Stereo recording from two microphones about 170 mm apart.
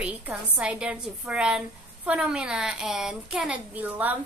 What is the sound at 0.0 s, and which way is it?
A woman's voice, 5° right (ahead or behind).